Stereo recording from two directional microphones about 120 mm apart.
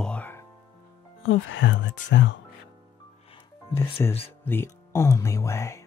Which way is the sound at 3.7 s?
20° left (ahead or behind).